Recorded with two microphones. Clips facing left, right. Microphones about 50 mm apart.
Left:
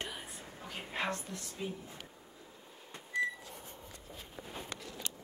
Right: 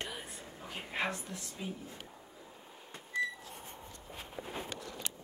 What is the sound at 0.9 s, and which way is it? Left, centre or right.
Speech, centre.